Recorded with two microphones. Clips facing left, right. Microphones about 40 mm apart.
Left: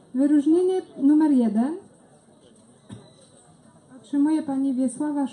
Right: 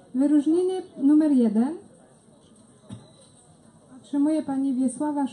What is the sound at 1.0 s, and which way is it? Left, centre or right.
Female singing, centre.